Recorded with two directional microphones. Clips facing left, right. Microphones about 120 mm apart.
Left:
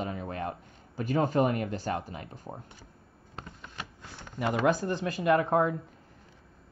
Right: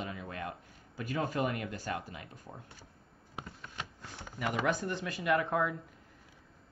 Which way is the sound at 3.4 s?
10° right (ahead or behind).